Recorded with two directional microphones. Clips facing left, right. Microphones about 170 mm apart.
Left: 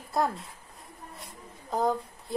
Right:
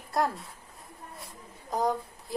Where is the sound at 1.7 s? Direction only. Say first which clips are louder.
Left 1 dB; centre (ahead or behind).